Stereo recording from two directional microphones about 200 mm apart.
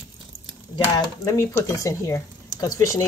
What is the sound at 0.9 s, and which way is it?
Speech, 15° left (ahead or behind).